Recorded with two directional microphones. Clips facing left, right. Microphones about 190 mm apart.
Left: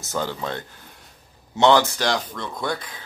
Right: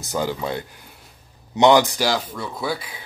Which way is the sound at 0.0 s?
15° right (ahead or behind).